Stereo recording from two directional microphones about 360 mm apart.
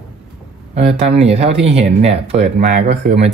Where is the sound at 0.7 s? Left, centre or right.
Centre.